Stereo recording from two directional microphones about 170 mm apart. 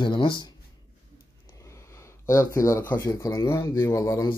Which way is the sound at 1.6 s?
15° left (ahead or behind).